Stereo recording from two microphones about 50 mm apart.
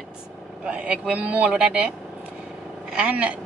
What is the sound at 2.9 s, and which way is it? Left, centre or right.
Speech, right.